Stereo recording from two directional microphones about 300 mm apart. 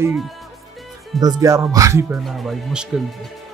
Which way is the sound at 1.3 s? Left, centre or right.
Centre.